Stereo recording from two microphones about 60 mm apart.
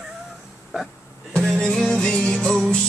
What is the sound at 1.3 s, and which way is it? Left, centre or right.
Music, centre.